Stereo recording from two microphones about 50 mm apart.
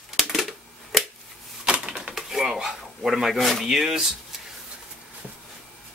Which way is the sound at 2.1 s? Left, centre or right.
Centre.